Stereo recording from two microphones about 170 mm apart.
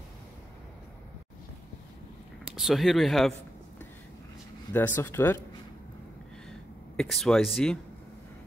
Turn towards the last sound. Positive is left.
turn(degrees=0)  # may be behind; listen again after turning